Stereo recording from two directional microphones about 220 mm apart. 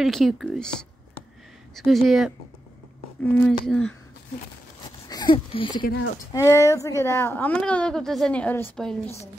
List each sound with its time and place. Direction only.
0.0 s speech: centre (ahead or behind)
5.1 s a woman's voice: 20° left (ahead or behind); by 9.2 s 5° left (ahead or behind)